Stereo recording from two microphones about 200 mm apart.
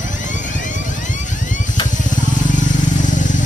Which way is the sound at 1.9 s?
40° left (ahead or behind).